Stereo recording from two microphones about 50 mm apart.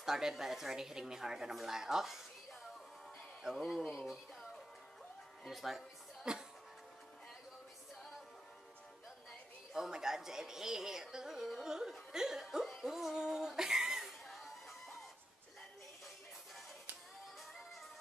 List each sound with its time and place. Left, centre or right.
0.0 s speech: centre
5.4 s speech: centre
6.3 s speech: centre
9.8 s speech: centre
12.8 s a sound: centre